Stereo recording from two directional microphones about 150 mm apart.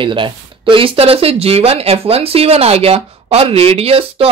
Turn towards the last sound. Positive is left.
turn(degrees=-40)  # may be behind; listen again after turning